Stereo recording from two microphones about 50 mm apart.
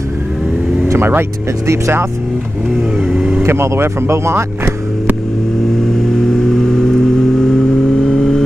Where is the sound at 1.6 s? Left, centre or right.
Right.